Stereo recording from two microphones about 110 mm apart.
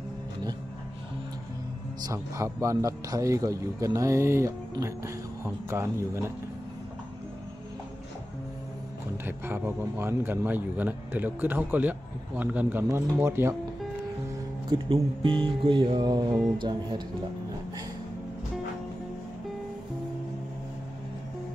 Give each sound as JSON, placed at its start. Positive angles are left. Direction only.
{"t": 2.1, "sound": "a man's voice", "side_deg": -25}
{"t": 9.2, "sound": "a man's voice", "side_deg": -20}
{"t": 14.7, "sound": "speech", "side_deg": -50}